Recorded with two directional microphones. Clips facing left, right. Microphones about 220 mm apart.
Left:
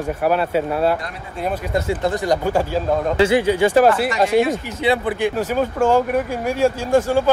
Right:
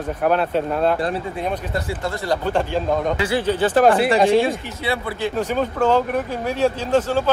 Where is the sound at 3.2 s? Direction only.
20° left (ahead or behind).